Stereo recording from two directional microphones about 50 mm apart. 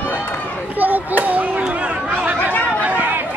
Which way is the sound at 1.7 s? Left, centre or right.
Right.